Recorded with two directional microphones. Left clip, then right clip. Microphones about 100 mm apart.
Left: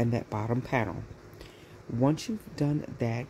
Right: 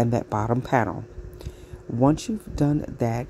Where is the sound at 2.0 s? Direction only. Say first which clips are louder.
Right 7 dB; 35° right (ahead or behind).